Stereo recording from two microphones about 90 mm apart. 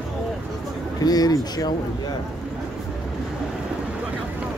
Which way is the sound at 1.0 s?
45° left (ahead or behind).